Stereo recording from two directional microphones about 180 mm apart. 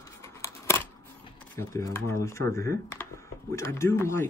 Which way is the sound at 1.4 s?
15° left (ahead or behind).